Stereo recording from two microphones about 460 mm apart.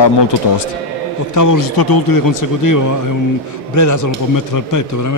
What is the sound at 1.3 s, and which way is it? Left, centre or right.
A man's voice, left.